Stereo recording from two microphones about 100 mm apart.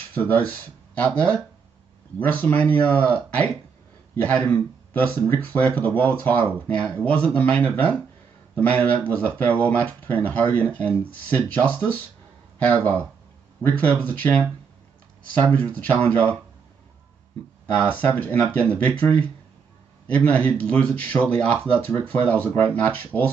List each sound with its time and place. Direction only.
0.1 s speech: 15° left (ahead or behind)
15.4 s speech: 15° left (ahead or behind)
17.9 s speech: 20° left (ahead or behind)